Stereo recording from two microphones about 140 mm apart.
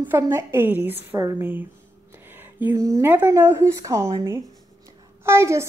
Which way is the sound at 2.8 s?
20° right (ahead or behind).